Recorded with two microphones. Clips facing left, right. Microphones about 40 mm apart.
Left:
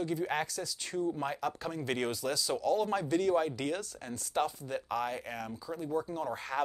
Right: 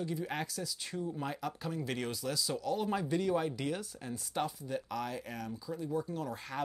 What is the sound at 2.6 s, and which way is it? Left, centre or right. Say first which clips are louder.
Speech: left 6 dB; centre.